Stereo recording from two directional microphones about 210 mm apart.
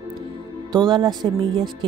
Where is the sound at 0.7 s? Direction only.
20° right (ahead or behind).